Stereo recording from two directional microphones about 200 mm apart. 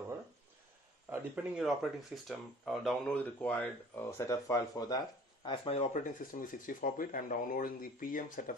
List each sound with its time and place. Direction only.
1.1 s speech: 5° right (ahead or behind); by 8.5 s 45° left (ahead or behind)